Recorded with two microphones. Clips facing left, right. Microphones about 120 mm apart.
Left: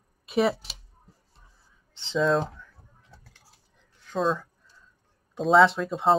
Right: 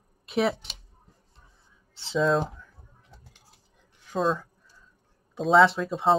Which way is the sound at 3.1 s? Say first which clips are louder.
Even; 20° right (ahead or behind).